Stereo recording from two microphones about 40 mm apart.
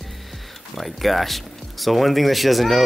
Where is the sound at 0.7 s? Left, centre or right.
Centre.